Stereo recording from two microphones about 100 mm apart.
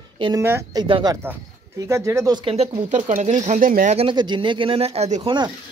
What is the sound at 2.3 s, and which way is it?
Speech, 65° right (ahead or behind).